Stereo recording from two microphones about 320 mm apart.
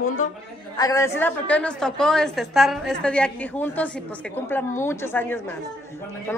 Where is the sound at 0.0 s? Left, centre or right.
Left.